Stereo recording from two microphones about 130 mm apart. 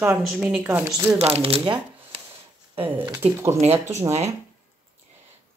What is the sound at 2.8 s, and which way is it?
Speech, 20° right (ahead or behind).